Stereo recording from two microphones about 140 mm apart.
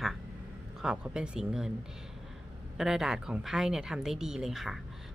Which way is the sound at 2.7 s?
5° right (ahead or behind).